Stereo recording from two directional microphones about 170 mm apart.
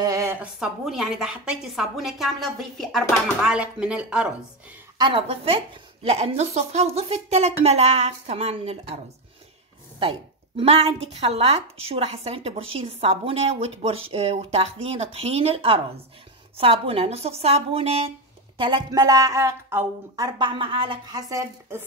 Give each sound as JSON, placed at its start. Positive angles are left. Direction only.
{"t": 0.0, "sound": "a sound", "side_deg": -15}
{"t": 0.6, "sound": "a woman's voice", "side_deg": 0}
{"t": 4.9, "sound": "a woman's voice", "side_deg": -30}
{"t": 18.6, "sound": "a woman's voice", "side_deg": -25}
{"t": 20.2, "sound": "a woman's voice", "side_deg": -30}